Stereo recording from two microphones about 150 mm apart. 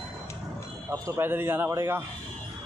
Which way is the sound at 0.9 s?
15° right (ahead or behind).